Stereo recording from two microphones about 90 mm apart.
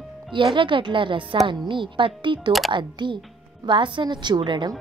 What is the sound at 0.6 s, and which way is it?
A woman's voice, 65° right (ahead or behind).